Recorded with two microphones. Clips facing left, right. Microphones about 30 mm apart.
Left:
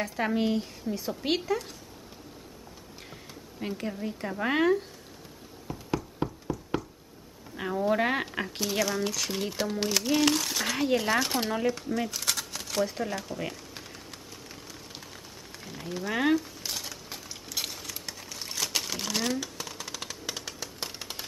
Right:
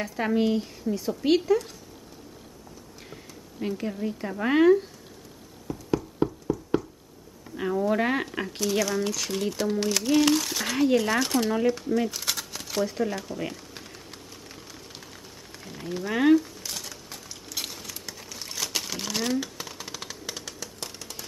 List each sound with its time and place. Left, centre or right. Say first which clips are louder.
0.0 s speech: right 3 dB; centre
3.1 s a woman's voice: right 1 dB; centre
5.9 s a sound: right 6 dB; centre
7.9 s speech: right 1 dB; centre
15.6 s a sound: right 2 dB; centre
20.6 s music: left 1 dB; left